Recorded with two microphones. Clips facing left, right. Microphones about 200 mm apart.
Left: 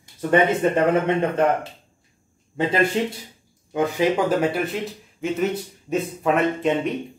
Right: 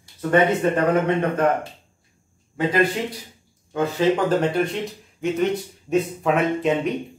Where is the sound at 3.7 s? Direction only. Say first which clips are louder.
Even; 10° left (ahead or behind).